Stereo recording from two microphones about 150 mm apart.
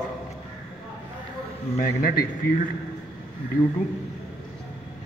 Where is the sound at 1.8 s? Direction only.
80° left.